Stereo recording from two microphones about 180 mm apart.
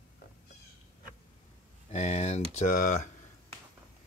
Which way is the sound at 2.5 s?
45° left (ahead or behind).